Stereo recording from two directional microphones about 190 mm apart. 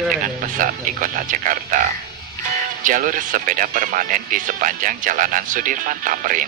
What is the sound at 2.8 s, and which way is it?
Speech, 45° right (ahead or behind).